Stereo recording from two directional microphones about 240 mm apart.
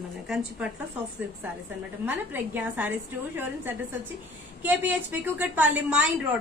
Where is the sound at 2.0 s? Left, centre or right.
Centre.